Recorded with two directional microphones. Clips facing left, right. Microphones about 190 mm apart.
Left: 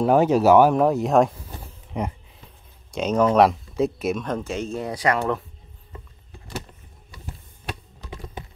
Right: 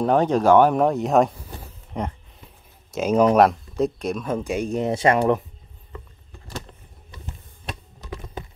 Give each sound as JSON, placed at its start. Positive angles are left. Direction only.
{"t": 0.0, "sound": "speech", "side_deg": 5}
{"t": 2.9, "sound": "speech", "side_deg": -5}
{"t": 4.3, "sound": "speech", "side_deg": -10}